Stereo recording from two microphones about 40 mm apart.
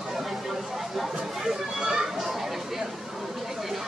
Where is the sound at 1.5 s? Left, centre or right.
Centre.